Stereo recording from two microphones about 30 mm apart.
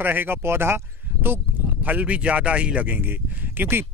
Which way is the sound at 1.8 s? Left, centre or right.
Right.